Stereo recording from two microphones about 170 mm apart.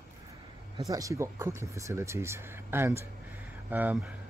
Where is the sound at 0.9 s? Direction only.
20° right (ahead or behind).